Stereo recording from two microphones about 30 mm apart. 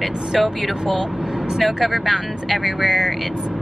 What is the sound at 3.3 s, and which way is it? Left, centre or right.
Speech, right.